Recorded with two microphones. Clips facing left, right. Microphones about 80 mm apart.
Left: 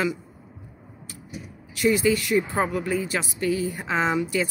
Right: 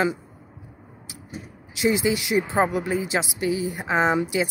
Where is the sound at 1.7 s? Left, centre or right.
Centre.